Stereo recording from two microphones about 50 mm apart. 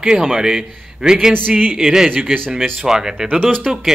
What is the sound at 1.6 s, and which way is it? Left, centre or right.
Speech, right.